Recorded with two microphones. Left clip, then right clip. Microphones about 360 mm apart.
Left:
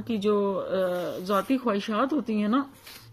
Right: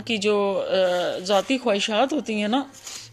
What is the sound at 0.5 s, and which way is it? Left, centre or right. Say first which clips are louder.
Speech: right 6 dB; right.